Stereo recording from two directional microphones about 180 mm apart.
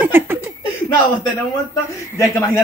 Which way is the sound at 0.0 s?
10° right (ahead or behind).